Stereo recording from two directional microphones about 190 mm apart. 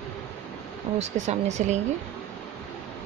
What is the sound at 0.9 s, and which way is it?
Speech, 40° right (ahead or behind).